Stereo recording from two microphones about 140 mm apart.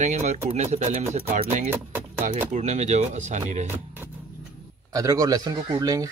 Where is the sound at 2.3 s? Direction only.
60° right (ahead or behind).